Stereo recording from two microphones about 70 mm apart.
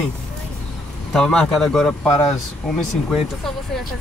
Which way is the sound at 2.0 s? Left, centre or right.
Left.